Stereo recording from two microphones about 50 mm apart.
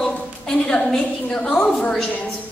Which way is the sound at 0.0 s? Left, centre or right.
Centre.